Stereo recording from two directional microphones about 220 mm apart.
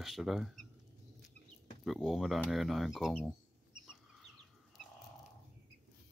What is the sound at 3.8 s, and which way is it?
Chicken, centre (ahead or behind).